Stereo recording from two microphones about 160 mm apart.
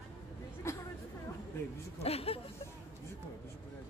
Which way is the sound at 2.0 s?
40° left (ahead or behind).